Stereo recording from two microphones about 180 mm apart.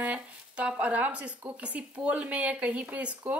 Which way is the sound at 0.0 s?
5° right (ahead or behind).